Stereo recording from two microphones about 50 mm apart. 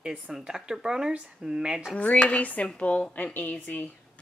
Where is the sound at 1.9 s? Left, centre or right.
Left.